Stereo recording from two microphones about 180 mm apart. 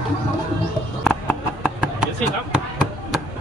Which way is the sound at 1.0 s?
Centre (ahead or behind).